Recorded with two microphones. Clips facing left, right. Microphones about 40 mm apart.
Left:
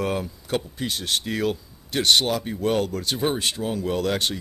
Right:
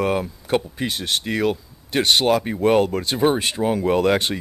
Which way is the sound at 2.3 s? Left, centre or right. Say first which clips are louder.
Right 6 dB; right.